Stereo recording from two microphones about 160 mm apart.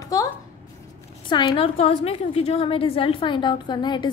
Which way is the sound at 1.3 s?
30° left (ahead or behind).